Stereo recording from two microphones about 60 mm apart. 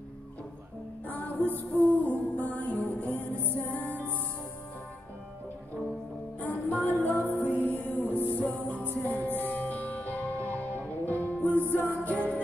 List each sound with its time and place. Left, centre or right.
1.0 s music: left
6.7 s music: left